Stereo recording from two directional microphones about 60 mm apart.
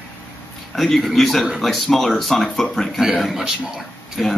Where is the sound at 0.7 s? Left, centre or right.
Centre.